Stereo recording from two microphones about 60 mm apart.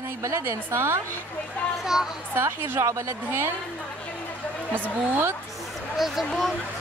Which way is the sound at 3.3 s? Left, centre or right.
Right.